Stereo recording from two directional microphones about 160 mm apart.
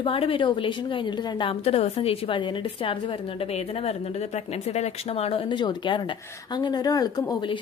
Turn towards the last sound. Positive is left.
turn(degrees=25)  # may be behind; listen again after turning